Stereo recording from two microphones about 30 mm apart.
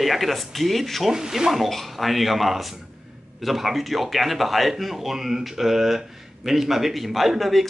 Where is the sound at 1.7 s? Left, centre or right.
Centre.